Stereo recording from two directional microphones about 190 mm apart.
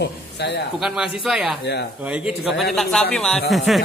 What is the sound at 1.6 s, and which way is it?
Speech, 60° left (ahead or behind).